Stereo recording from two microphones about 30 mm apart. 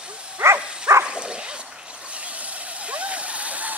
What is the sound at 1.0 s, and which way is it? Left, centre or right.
Dog, right.